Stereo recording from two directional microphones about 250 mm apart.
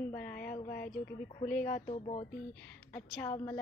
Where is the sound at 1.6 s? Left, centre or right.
Left.